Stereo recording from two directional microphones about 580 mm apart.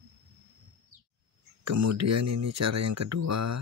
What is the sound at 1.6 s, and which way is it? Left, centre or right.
Speech, right.